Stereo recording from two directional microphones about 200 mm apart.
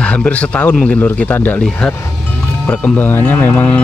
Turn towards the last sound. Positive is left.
turn(degrees=10)  # may be behind; listen again after turning